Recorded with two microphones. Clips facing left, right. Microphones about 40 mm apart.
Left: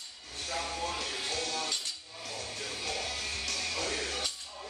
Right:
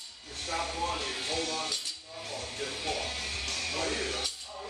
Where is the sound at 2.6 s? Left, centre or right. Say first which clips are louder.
Right 3 dB; right.